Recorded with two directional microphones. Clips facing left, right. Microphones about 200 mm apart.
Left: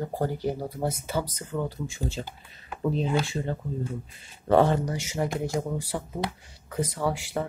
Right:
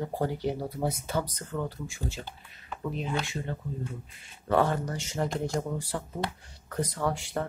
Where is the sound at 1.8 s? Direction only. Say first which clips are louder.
Left 4 dB; 20° left (ahead or behind).